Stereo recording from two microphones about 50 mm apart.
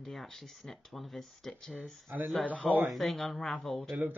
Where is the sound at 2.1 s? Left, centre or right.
Right.